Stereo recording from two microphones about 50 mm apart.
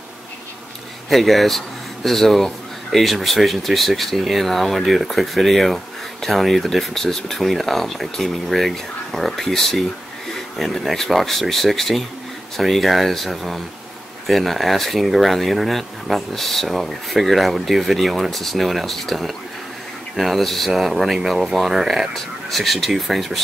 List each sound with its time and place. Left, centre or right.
1.1 s speech: centre
22.1 s speech: centre